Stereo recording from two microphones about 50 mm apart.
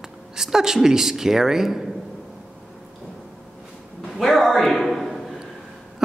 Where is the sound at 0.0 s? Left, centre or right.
Centre.